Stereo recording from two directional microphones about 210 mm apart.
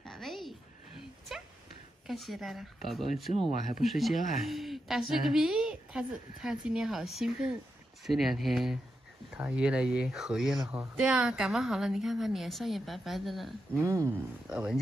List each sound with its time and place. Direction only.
0.0 s a sound: centre (ahead or behind)
2.0 s a woman's voice: centre (ahead or behind)
13.7 s speech: 15° right (ahead or behind)